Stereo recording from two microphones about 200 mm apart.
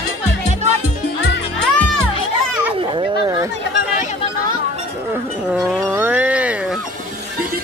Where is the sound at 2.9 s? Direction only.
20° right (ahead or behind).